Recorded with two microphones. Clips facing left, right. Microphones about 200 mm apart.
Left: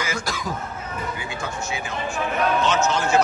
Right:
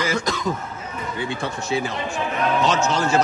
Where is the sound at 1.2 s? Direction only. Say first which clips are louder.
Right 4 dB; 30° right (ahead or behind).